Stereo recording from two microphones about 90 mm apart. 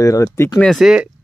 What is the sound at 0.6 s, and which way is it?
Speech, centre (ahead or behind).